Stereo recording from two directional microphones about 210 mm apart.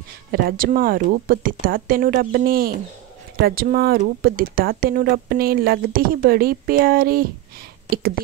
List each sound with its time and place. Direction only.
0.3 s speech: 45° right (ahead or behind)